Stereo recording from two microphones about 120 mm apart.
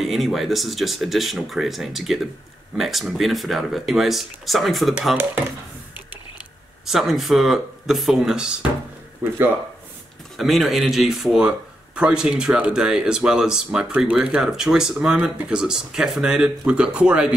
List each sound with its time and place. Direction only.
0.0 s speech: centre (ahead or behind)
6.9 s speech: centre (ahead or behind)
9.2 s speech: 15° right (ahead or behind)
10.3 s speech: centre (ahead or behind)